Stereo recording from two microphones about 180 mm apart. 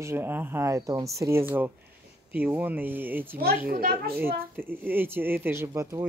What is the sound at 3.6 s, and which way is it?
Speech, 55° right (ahead or behind).